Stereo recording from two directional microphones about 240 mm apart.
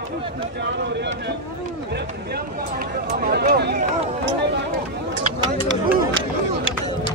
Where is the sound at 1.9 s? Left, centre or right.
Right.